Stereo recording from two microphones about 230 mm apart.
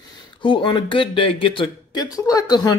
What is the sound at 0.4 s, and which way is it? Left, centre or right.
Speech, left.